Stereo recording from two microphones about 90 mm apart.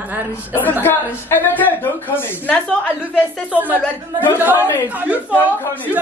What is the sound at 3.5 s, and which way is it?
Speech, 20° right (ahead or behind).